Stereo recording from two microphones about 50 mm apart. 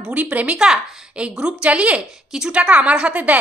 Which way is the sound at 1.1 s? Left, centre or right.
Right.